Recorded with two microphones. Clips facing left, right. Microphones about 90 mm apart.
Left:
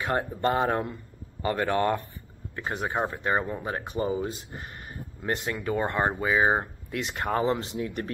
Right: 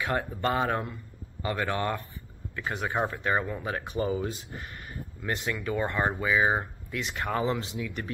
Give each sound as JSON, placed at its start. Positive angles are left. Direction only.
{"t": 0.0, "sound": "speech", "side_deg": 30}
{"t": 6.9, "sound": "speech", "side_deg": 45}